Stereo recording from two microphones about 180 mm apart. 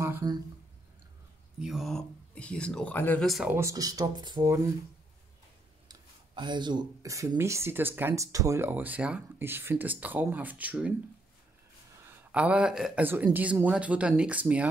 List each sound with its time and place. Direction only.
0.0 s a sound: 20° right (ahead or behind)
1.6 s speech: centre (ahead or behind)
3.5 s speech: 20° right (ahead or behind)
5.9 s speech: 25° right (ahead or behind); by 10.9 s 10° right (ahead or behind)
12.3 s speech: 5° right (ahead or behind)